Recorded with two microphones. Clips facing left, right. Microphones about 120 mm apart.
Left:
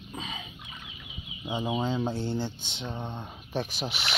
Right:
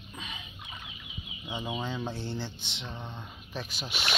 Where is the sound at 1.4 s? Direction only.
25° left (ahead or behind).